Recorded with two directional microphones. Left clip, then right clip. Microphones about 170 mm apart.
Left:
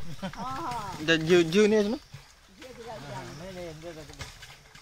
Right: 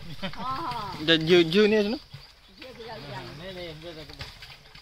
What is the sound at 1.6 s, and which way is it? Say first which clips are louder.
Speech: right 1 dB; 15° left (ahead or behind).